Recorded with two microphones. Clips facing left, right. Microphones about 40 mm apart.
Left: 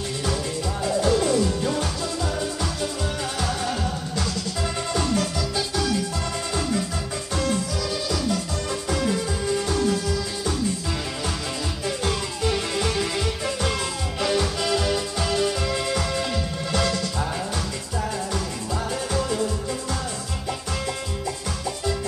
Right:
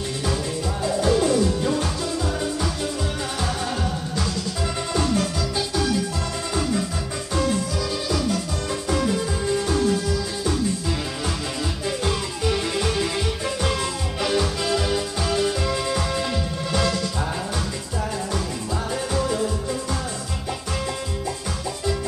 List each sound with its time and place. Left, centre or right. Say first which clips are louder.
0.8 s music: right 1 dB; centre
4.9 s music: right 2 dB; centre
9.7 s music: right 2 dB; centre
12.0 s music: even; centre
14.2 s music: even; centre
19.1 s music: right 2 dB; centre